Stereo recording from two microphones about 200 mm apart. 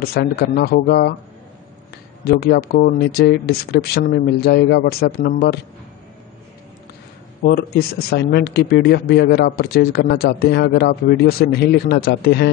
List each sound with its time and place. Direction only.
0.0 s speech: 50° left (ahead or behind)
2.2 s speech: 50° left (ahead or behind)
7.4 s speech: 50° left (ahead or behind)